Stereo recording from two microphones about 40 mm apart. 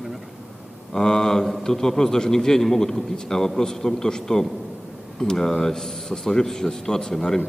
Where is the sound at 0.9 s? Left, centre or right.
Centre.